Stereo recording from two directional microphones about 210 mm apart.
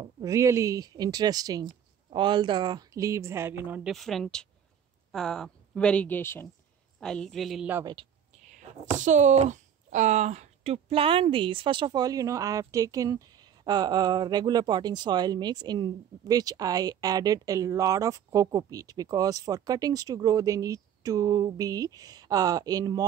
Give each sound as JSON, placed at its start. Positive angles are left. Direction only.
{"t": 0.0, "sound": "a woman's voice", "side_deg": -15}
{"t": 7.8, "sound": "speech", "side_deg": -20}
{"t": 8.9, "sound": "speech", "side_deg": -35}